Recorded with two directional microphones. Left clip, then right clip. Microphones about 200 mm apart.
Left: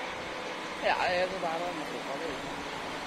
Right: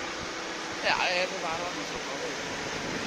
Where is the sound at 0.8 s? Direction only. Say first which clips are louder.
Right 1 dB; 35° left (ahead or behind).